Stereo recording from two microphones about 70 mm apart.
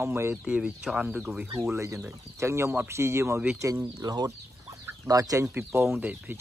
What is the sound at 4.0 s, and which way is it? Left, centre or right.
Fowl, right.